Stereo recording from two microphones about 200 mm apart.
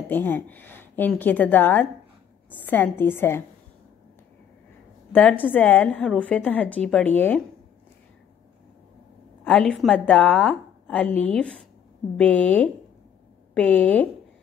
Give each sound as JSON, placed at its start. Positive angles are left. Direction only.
{"t": 0.1, "sound": "a woman's voice", "side_deg": 10}
{"t": 5.1, "sound": "a woman's voice", "side_deg": 10}
{"t": 9.4, "sound": "a woman's voice", "side_deg": 5}